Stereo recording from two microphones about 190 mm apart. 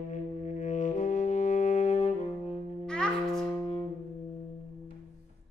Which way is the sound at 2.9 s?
5° left (ahead or behind).